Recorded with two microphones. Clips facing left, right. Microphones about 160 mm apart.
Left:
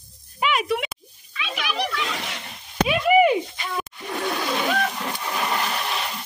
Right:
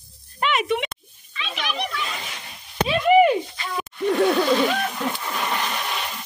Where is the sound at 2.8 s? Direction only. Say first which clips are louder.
Right 1 dB; 5° left (ahead or behind).